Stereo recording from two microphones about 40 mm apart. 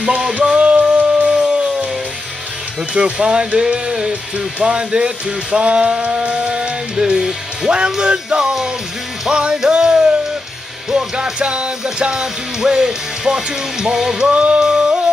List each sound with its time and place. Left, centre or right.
0.6 s music: right
1.3 s music: centre
2.9 s speech: right
3.7 s music: centre
4.1 s speech: right
6.2 s music: right
7.0 s music: centre
8.0 s speech: right
9.3 s music: right
11.3 s music: right
14.3 s music: right
14.6 s yodeling: centre